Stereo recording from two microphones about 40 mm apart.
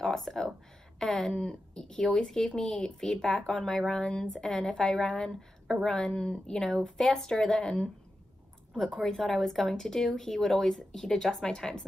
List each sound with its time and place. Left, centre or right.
0.0 s speech: centre
8.7 s speech: centre